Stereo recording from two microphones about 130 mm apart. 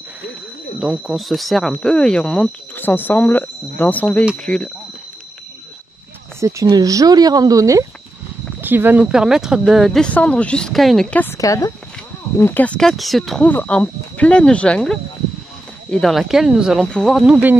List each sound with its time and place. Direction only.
0.7 s speech: 5° right (ahead or behind)
6.4 s speech: 25° right (ahead or behind)
8.5 s speech: 15° right (ahead or behind); by 11.1 s centre (ahead or behind)
11.3 s speech: 25° left (ahead or behind); by 17.2 s 5° left (ahead or behind)
17.3 s speech: 15° right (ahead or behind)